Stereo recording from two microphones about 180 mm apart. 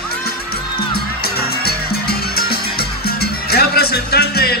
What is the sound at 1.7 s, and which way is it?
Music, 60° left (ahead or behind).